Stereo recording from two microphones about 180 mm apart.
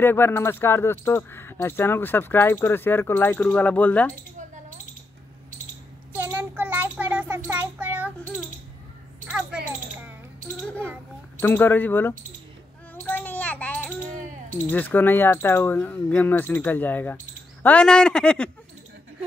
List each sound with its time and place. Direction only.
0.0 s speech: 10° left (ahead or behind)
6.1 s a sound: 10° right (ahead or behind)
9.2 s a child's voice: 5° right (ahead or behind)
10.6 s speech: 5° left (ahead or behind)
13.0 s a sound: 10° left (ahead or behind)
14.7 s speech: 10° left (ahead or behind)